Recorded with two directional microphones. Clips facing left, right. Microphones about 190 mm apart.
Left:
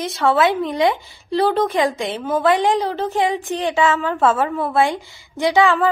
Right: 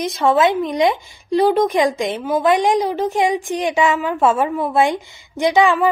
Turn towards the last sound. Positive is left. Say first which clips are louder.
# right 1 dB
turn(degrees=-15)  # may be behind; listen again after turning